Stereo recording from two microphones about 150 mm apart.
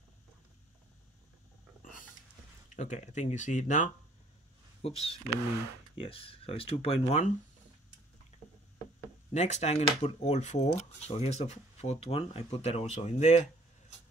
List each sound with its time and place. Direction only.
1.8 s a sound: 65° left (ahead or behind)
2.7 s speech: 50° left (ahead or behind)
4.8 s speech: 40° left (ahead or behind)
9.3 s speech: 50° left (ahead or behind)